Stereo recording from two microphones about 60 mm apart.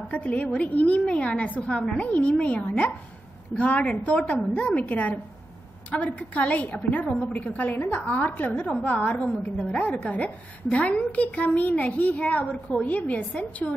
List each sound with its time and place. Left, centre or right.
0.1 s a woman's voice: left